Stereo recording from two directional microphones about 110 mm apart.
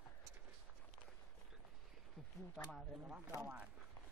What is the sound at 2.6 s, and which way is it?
Speech, 10° left (ahead or behind).